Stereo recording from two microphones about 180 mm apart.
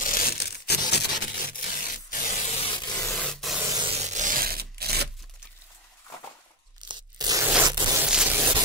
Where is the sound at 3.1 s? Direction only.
Centre (ahead or behind).